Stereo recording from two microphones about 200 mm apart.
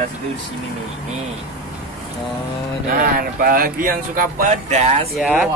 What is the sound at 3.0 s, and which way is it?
Speech, 45° right (ahead or behind).